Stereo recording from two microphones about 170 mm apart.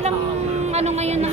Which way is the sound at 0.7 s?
40° right (ahead or behind).